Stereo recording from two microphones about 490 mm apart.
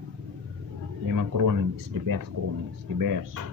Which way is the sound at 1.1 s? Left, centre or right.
Right.